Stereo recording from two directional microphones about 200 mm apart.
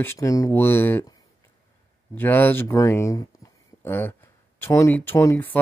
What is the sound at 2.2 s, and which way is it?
Speech, 10° left (ahead or behind).